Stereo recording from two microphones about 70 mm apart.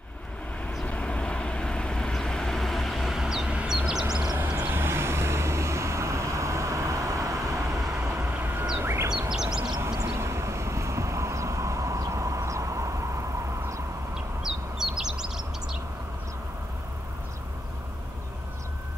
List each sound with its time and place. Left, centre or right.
0.8 s vehicle: centre
3.5 s bird: centre
4.4 s vehicle: right
8.7 s bird: right
9.3 s a sound: centre
10.0 s vehicle: right
14.4 s bird: centre